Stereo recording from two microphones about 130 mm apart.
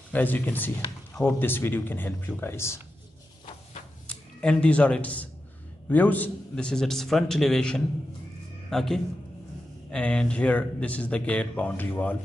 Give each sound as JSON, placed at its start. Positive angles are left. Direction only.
{"t": 0.1, "sound": "speech", "side_deg": 15}
{"t": 4.4, "sound": "a man's voice", "side_deg": 10}